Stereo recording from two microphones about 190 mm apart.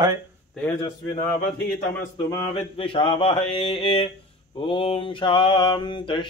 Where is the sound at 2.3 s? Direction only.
25° left (ahead or behind).